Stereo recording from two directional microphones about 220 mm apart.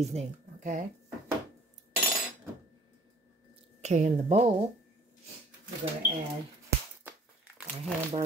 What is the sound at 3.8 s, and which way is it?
Speech, 30° right (ahead or behind).